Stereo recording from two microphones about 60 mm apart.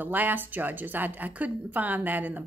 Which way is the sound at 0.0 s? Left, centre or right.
Right.